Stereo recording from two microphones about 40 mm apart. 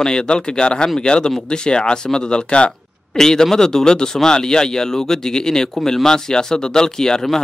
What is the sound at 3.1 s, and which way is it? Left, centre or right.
Speech, centre.